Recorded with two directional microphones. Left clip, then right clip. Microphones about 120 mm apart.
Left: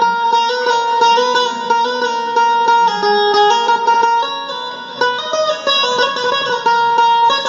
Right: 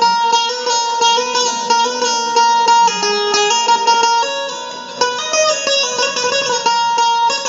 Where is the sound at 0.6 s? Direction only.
15° left (ahead or behind).